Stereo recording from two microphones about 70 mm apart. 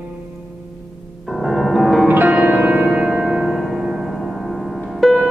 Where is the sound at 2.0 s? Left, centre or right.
Right.